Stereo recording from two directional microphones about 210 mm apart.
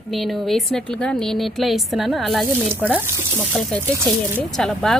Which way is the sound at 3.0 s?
10° right (ahead or behind).